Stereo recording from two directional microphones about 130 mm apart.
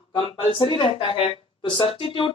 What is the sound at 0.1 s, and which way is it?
Speech, 40° left (ahead or behind).